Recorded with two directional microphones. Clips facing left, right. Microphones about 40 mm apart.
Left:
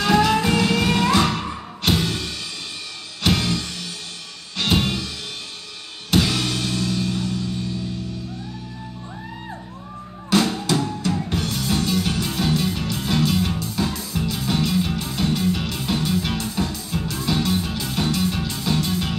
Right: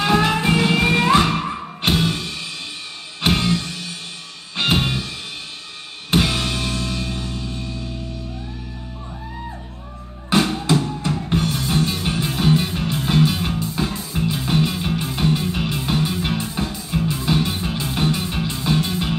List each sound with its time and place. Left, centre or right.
0.0 s music: right
3.2 s music: right
4.6 s music: right
6.0 s music: right
10.3 s music: right